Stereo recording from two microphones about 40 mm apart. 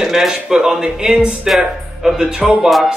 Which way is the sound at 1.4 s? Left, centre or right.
Centre.